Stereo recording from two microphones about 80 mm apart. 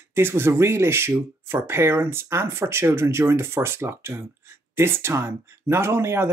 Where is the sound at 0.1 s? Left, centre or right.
Right.